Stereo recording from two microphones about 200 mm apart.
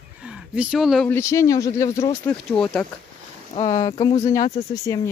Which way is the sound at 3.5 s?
35° left (ahead or behind).